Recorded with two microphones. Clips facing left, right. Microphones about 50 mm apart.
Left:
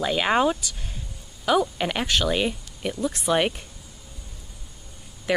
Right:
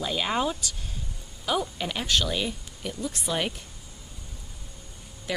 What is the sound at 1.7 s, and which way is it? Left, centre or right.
Speech, left.